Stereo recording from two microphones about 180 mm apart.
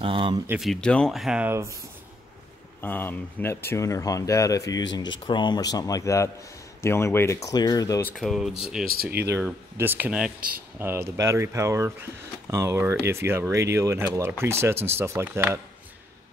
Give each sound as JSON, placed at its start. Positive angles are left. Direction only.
{"t": 0.0, "sound": "speech", "side_deg": -30}
{"t": 0.5, "sound": "speech", "side_deg": 0}
{"t": 2.8, "sound": "speech", "side_deg": 10}
{"t": 8.2, "sound": "speech", "side_deg": 0}
{"t": 8.8, "sound": "speech", "side_deg": -60}
{"t": 9.3, "sound": "speech", "side_deg": -10}